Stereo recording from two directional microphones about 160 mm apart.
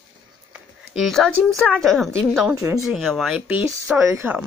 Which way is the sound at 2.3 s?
15° right (ahead or behind).